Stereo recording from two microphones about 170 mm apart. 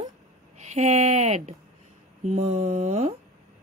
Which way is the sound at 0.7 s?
40° right (ahead or behind).